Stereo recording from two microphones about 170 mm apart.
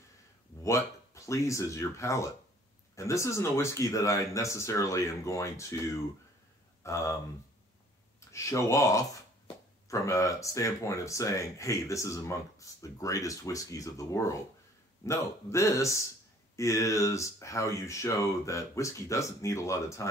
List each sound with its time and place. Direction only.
0.7 s speech: 15° left (ahead or behind)
8.3 s speech: 20° left (ahead or behind)